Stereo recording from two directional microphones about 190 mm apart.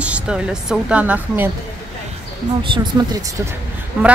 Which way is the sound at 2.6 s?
25° right (ahead or behind).